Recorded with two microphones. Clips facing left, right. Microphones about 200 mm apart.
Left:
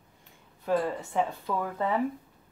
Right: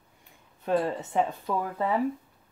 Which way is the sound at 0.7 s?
15° right (ahead or behind).